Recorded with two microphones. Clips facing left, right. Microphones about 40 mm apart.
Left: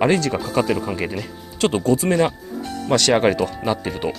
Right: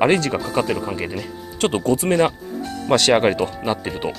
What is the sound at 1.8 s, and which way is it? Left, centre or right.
Speech, right.